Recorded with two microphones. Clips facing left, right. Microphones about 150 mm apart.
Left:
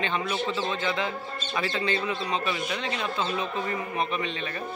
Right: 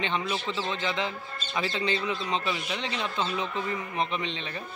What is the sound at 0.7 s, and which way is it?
Speech, 20° right (ahead or behind).